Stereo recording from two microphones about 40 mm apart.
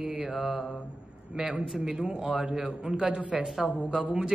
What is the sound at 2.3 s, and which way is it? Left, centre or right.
Speech, right.